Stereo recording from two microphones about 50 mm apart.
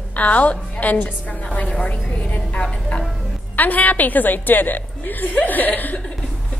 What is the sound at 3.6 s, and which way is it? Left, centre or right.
A woman's voice, left.